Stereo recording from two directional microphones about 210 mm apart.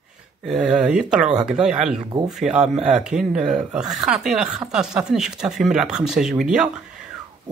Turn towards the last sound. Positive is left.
turn(degrees=-5)  # may be behind; listen again after turning